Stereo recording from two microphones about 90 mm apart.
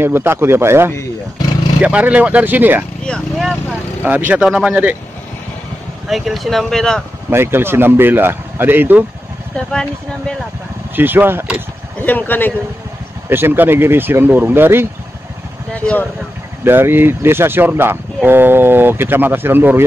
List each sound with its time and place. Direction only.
0.0 s speech: 25° right (ahead or behind)
1.8 s speech: 15° right (ahead or behind)
4.0 s speech: 20° right (ahead or behind)
4.5 s speech: 5° right (ahead or behind)
6.0 s speech: centre (ahead or behind)
7.2 s speech: 25° right (ahead or behind)
9.6 s speech: 10° left (ahead or behind)
11.0 s speech: 20° right (ahead or behind)
12.0 s speech: 20° left (ahead or behind)
13.3 s speech: 25° right (ahead or behind)
15.7 s speech: 15° left (ahead or behind)
16.6 s speech: 25° right (ahead or behind)